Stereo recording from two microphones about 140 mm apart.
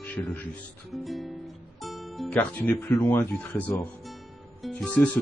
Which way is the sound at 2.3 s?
10° left (ahead or behind).